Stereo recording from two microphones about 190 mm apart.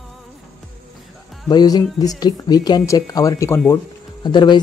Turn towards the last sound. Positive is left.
turn(degrees=25)  # may be behind; listen again after turning